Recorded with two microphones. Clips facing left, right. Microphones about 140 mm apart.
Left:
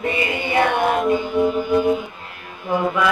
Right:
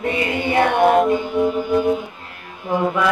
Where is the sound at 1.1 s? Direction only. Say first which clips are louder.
Even; 5° left (ahead or behind).